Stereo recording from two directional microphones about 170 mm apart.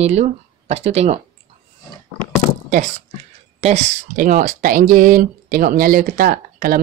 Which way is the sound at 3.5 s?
40° right (ahead or behind).